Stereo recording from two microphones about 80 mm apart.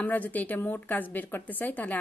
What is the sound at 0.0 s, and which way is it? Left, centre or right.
A woman's voice, left.